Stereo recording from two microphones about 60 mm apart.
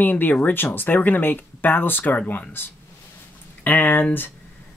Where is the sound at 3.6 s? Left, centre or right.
Left.